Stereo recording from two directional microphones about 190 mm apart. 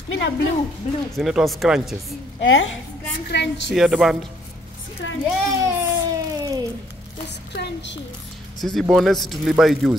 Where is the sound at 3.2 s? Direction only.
65° left (ahead or behind).